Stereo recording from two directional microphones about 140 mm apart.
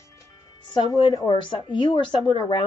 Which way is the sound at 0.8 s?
35° left (ahead or behind).